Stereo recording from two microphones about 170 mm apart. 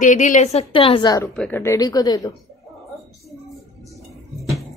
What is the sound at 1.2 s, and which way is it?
Speech, 10° left (ahead or behind).